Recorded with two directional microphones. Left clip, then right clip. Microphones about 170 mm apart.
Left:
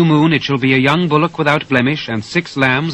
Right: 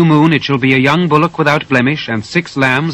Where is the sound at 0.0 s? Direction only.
35° left (ahead or behind).